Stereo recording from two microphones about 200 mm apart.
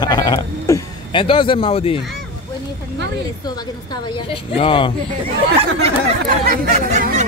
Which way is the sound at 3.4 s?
20° left (ahead or behind).